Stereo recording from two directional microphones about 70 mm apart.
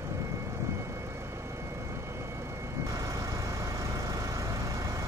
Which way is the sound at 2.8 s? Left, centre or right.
Right.